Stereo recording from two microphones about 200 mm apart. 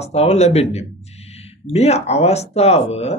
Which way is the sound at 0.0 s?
30° left (ahead or behind).